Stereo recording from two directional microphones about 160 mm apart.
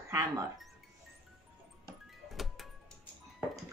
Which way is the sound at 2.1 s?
Centre (ahead or behind).